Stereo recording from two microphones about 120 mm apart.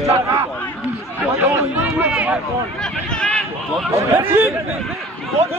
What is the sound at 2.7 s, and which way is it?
Speech, 5° left (ahead or behind).